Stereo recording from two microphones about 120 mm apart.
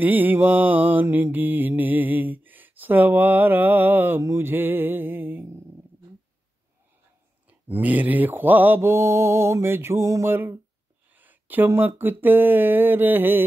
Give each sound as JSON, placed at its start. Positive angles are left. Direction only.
{"t": 0.0, "sound": "mantra", "side_deg": -15}
{"t": 7.4, "sound": "mantra", "side_deg": -15}